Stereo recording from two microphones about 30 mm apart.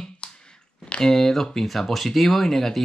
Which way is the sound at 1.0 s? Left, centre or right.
Centre.